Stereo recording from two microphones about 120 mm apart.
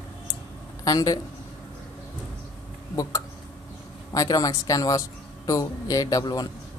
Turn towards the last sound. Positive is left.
turn(degrees=35)  # may be behind; listen again after turning